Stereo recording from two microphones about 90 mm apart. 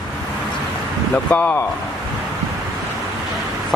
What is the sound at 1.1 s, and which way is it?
Speech, 20° left (ahead or behind).